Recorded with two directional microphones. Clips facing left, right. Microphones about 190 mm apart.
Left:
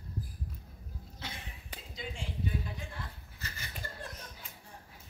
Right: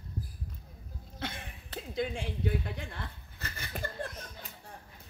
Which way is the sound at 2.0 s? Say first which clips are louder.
Right 7 dB; 65° right (ahead or behind).